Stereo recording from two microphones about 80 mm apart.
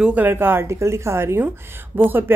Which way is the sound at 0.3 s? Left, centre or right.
Right.